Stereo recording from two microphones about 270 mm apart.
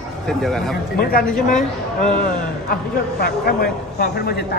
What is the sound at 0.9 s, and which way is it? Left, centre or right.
Speech, left.